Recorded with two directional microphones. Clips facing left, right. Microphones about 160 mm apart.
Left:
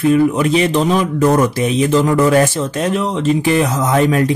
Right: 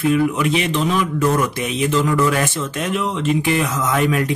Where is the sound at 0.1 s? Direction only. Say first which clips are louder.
Left 5 dB; 35° left (ahead or behind).